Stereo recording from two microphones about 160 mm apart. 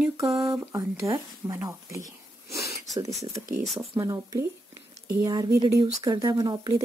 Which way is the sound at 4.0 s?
20° right (ahead or behind).